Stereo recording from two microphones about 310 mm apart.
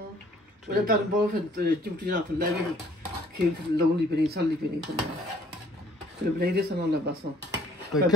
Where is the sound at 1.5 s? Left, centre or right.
Right.